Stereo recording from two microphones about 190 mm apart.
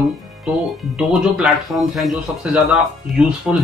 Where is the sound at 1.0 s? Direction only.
5° right (ahead or behind).